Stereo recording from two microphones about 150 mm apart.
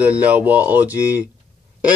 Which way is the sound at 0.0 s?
10° right (ahead or behind).